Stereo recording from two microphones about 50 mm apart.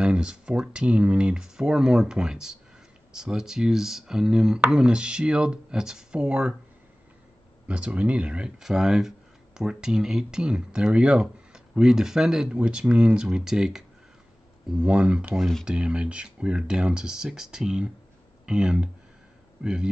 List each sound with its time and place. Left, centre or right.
0.0 s speech: centre
6.2 s speech: right
7.6 s speech: right
14.8 s speech: right